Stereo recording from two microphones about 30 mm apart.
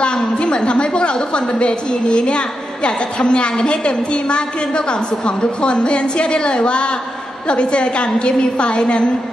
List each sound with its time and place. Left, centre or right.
0.0 s a woman's voice: left